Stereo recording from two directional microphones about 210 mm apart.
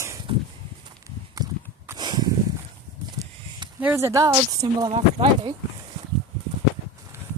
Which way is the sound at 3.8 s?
15° right (ahead or behind).